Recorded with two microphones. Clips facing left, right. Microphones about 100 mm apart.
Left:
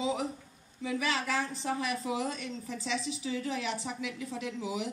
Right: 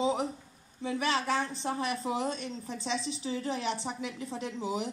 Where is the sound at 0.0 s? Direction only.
35° right (ahead or behind).